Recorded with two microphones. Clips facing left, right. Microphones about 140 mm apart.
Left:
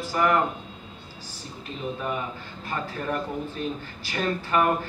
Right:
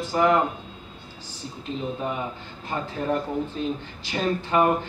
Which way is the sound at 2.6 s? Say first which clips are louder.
Right 3 dB; 20° right (ahead or behind).